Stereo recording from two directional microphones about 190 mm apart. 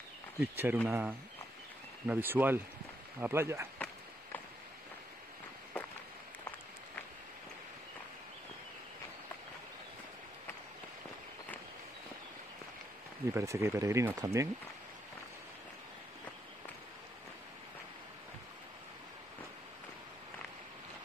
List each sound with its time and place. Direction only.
0.4 s speech: 10° right (ahead or behind)
3.7 s a sound: 10° left (ahead or behind)
13.3 s speech: 15° right (ahead or behind)